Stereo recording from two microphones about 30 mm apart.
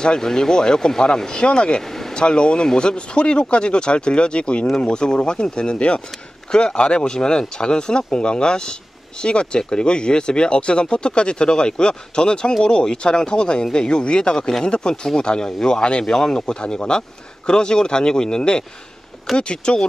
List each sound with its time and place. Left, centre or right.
0.0 s speech: left